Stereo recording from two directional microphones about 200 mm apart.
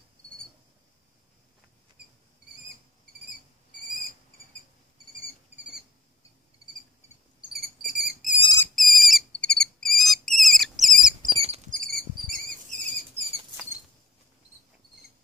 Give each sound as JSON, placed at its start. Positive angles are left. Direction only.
{"t": 8.2, "sound": "cricket", "side_deg": 40}
{"t": 8.7, "sound": "insect", "side_deg": 0}
{"t": 11.2, "sound": "rodents", "side_deg": -30}
{"t": 11.9, "sound": "cricket", "side_deg": -45}